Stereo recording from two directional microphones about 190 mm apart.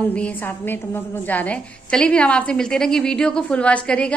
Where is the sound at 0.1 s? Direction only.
10° left (ahead or behind).